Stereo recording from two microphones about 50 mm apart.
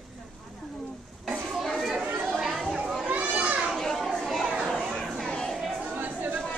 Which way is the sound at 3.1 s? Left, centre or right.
Right.